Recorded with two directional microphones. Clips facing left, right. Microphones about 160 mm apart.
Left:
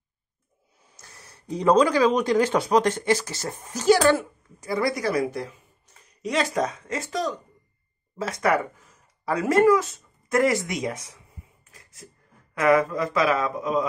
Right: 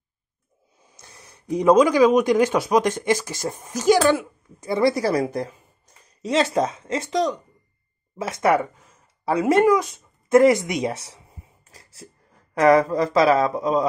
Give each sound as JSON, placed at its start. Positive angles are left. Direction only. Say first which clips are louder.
{"t": 0.8, "sound": "speech", "louder": "right 2 dB", "side_deg": -20}
{"t": 6.2, "sound": "speech", "louder": "right 4 dB", "side_deg": -30}
{"t": 11.1, "sound": "a sound", "louder": "right 2 dB", "side_deg": -30}
{"t": 12.5, "sound": "a man's voice", "louder": "right 4 dB", "side_deg": -35}